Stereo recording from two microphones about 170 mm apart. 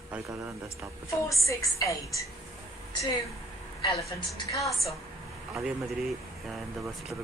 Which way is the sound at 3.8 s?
25° left (ahead or behind).